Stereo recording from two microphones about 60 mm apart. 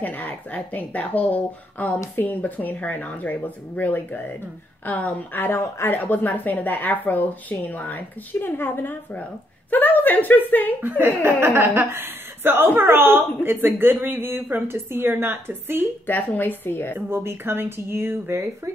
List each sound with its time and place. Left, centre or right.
0.0 s speech: left
5.5 s speech: left
5.9 s speech: left
10.8 s a woman's voice: right
16.1 s speech: left
17.1 s speech: right